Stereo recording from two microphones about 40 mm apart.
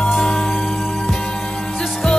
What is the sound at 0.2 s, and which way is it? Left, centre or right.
Music, centre.